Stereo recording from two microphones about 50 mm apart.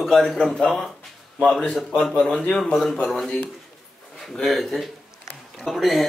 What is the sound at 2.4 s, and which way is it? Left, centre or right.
Speech, centre.